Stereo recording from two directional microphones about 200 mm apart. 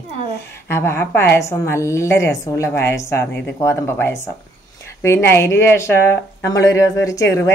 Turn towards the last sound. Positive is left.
turn(degrees=15)  # may be behind; listen again after turning